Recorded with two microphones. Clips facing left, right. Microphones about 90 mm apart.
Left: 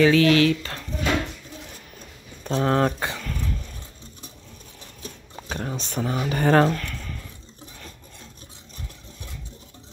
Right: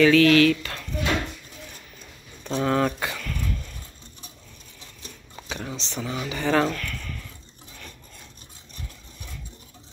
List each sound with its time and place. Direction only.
0.0 s speech: 25° left (ahead or behind)
2.4 s dog: 35° left (ahead or behind)
5.5 s speech: 45° left (ahead or behind)
6.7 s a sound: 25° left (ahead or behind)